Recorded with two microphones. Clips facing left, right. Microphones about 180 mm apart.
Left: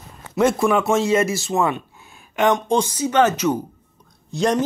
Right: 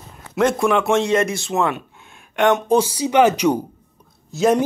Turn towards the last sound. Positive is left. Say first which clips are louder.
# right 3 dB
turn(degrees=-5)  # may be behind; listen again after turning